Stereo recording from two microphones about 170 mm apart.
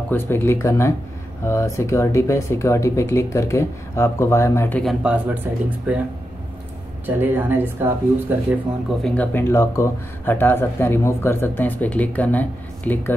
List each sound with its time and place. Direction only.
0.1 s speech: 15° left (ahead or behind)
5.0 s speech: 10° right (ahead or behind)
7.1 s speech: 10° right (ahead or behind)
9.0 s speech: 10° left (ahead or behind)